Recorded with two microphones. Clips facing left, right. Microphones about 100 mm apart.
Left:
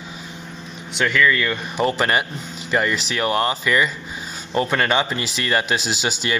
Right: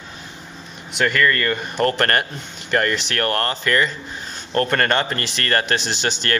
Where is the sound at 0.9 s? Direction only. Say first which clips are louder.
Even; centre (ahead or behind).